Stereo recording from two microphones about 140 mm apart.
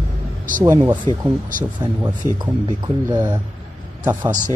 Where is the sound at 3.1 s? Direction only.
20° right (ahead or behind).